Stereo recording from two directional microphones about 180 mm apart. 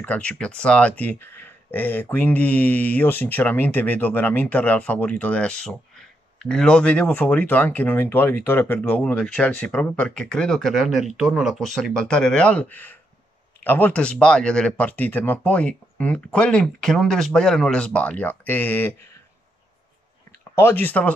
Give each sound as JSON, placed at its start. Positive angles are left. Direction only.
{"t": 0.0, "sound": "speech", "side_deg": 5}
{"t": 20.5, "sound": "speech", "side_deg": 10}